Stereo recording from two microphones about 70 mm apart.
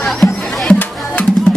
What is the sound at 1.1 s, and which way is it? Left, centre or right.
Music, centre.